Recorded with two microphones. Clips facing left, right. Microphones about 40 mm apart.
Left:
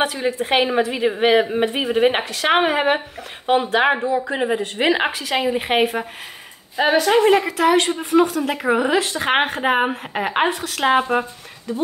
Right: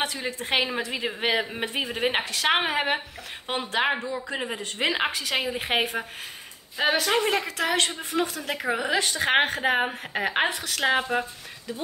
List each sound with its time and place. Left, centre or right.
0.0 s a woman's voice: centre
8.5 s a woman's voice: centre
8.9 s a woman's voice: centre